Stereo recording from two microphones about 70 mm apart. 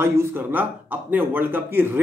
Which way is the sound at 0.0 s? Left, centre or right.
Right.